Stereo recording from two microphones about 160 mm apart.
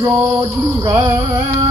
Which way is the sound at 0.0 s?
20° right (ahead or behind).